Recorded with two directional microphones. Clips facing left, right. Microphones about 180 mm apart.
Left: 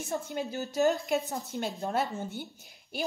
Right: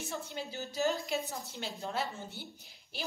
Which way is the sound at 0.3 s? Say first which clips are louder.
Left 7 dB; 50° left (ahead or behind).